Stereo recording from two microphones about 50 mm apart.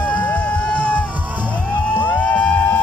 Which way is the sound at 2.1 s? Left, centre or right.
Left.